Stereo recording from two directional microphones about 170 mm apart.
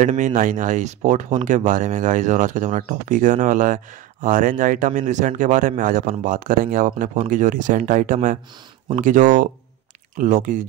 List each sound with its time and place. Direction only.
0.0 s speech: 45° right (ahead or behind)